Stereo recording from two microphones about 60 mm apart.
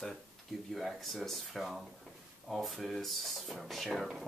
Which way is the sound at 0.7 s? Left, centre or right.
Centre.